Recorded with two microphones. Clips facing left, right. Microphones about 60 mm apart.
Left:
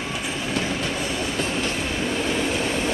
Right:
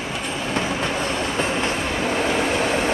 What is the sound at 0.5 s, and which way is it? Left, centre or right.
Train, right.